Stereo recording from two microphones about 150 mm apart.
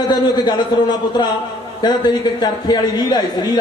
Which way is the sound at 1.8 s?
30° left (ahead or behind).